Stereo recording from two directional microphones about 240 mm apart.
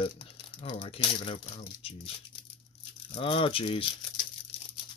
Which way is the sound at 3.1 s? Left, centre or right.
Left.